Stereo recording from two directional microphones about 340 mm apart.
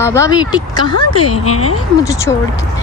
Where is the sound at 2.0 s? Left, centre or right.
Centre.